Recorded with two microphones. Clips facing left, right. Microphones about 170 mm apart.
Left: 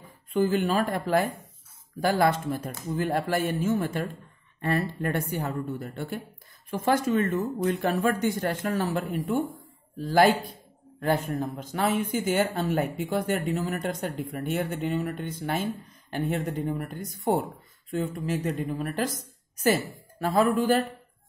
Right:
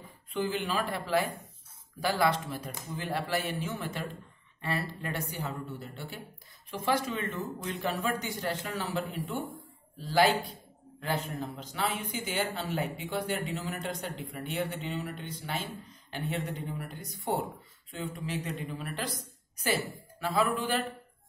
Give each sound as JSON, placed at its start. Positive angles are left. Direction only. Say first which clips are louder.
{"t": 0.3, "sound": "speech", "louder": "left 8 dB", "side_deg": 45}